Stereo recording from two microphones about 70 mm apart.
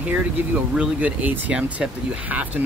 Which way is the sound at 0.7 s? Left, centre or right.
Centre.